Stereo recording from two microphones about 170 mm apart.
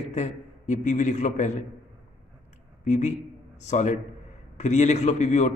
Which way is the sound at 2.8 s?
45° left (ahead or behind).